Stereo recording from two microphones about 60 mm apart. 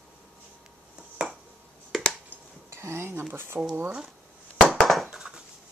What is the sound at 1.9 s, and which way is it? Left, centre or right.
Finger snapping, centre.